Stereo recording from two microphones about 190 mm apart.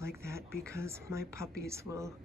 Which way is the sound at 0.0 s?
15° right (ahead or behind).